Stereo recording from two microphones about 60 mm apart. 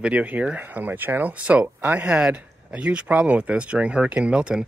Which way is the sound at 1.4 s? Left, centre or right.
Centre.